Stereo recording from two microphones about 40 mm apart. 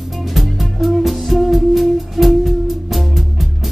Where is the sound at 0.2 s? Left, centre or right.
Centre.